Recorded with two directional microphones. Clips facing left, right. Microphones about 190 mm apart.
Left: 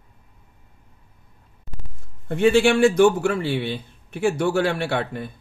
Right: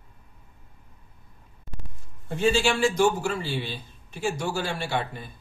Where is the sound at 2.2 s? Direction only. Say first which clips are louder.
Left 6 dB; 60° left (ahead or behind).